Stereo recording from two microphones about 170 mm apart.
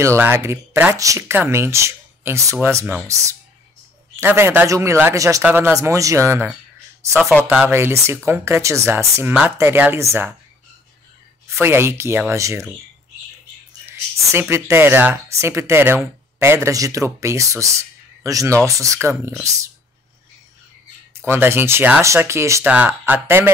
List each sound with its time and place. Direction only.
0.0 s speech: 15° right (ahead or behind)
7.2 s speech: 5° left (ahead or behind)
7.6 s speech: 15° right (ahead or behind)
11.4 s speech: 15° right (ahead or behind)
13.8 s speech: 15° right (ahead or behind)
21.3 s speech: 15° right (ahead or behind)